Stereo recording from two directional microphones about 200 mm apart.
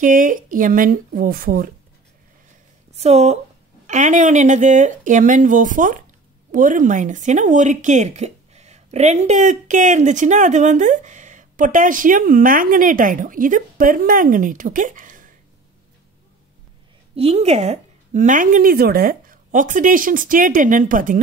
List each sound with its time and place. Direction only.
0.0 s speech: 40° right (ahead or behind)
3.0 s speech: 35° right (ahead or behind)
17.1 s speech: 30° right (ahead or behind)